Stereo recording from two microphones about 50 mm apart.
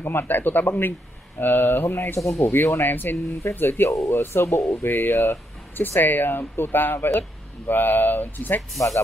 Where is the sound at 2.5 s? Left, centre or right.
Left.